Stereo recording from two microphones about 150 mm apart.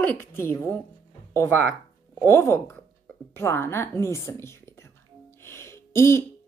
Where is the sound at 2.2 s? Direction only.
15° left (ahead or behind).